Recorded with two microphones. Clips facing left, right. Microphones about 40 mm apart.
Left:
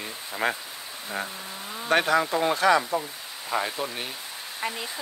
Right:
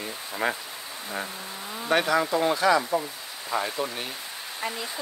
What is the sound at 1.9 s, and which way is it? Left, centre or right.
Speech, left.